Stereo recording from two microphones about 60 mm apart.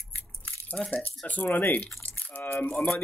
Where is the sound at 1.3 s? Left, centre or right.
Left.